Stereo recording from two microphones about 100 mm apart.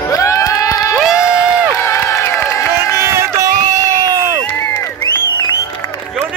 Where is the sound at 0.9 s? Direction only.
5° right (ahead or behind).